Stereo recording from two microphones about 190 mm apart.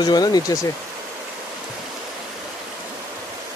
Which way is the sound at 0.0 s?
20° left (ahead or behind).